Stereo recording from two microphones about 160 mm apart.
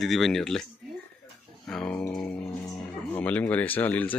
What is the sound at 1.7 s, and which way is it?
Speech, 5° left (ahead or behind).